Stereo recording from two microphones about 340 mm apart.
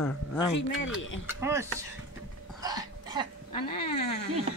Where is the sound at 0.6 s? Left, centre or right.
Left.